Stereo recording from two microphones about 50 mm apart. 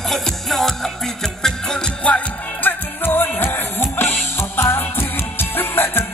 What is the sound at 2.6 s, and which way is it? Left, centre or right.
Music, left.